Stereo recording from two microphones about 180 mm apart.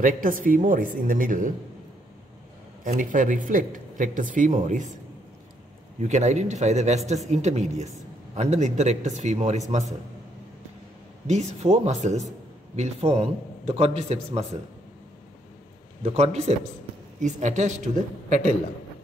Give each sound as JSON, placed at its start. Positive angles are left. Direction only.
{"t": 0.0, "sound": "speech", "side_deg": -50}
{"t": 2.8, "sound": "speech", "side_deg": -45}
{"t": 5.9, "sound": "a man's voice", "side_deg": -40}
{"t": 11.2, "sound": "a man's voice", "side_deg": -40}
{"t": 16.0, "sound": "a man's voice", "side_deg": -35}